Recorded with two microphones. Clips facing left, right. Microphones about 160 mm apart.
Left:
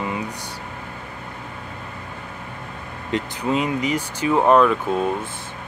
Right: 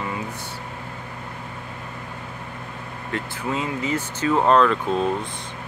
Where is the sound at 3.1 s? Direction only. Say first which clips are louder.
Left 5 dB; 20° left (ahead or behind).